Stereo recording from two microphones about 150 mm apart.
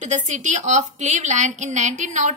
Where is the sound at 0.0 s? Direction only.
55° right (ahead or behind).